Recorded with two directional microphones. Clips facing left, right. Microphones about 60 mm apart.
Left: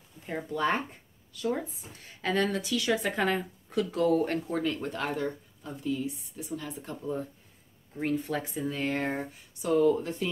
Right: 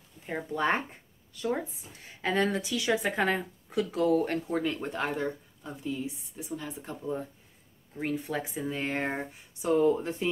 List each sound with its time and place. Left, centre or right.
0.5 s speech: right
2.2 s speech: centre